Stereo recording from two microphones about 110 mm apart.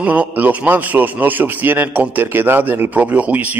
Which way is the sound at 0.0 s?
15° right (ahead or behind).